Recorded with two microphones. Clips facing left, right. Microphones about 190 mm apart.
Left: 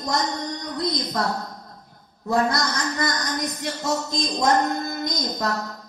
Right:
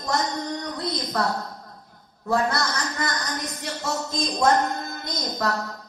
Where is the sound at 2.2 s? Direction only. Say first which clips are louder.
Left 1 dB; 15° left (ahead or behind).